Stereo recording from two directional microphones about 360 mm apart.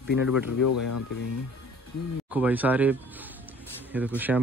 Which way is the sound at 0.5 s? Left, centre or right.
Left.